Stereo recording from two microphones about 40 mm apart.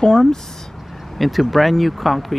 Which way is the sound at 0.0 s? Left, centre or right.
Centre.